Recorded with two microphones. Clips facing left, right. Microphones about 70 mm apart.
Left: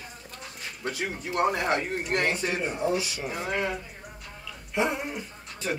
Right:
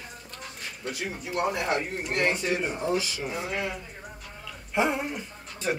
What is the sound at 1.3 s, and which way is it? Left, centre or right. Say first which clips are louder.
Speech: left 3 dB; left.